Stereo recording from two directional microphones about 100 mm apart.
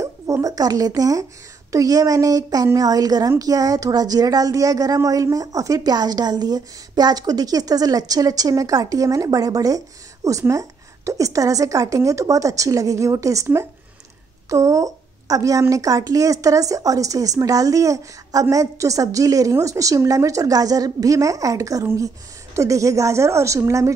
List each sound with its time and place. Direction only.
0.0 s a woman's voice: 35° right (ahead or behind)